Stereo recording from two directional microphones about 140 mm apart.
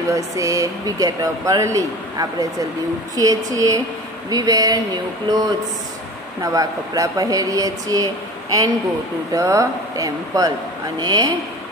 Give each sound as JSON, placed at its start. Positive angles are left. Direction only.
{"t": 0.1, "sound": "speech", "side_deg": -25}